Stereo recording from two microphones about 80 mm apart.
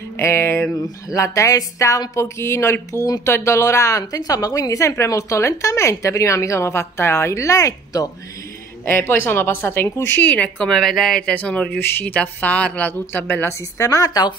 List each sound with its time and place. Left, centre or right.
0.2 s a woman's voice: left
0.8 s speech: left
4.0 s speech: left
8.8 s a woman's voice: left
10.2 s speech: centre
10.7 s speech: centre
11.8 s a woman's voice: left
13.0 s speech: left